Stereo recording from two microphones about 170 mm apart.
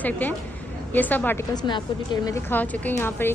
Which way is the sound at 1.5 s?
25° left (ahead or behind).